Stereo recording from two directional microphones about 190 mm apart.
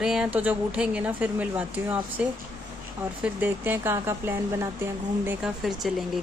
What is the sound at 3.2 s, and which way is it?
Speech, 10° right (ahead or behind).